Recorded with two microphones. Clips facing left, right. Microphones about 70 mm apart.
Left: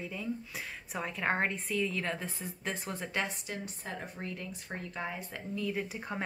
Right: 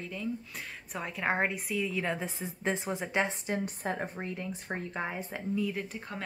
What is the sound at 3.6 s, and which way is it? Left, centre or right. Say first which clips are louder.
Speech: right 7 dB; right.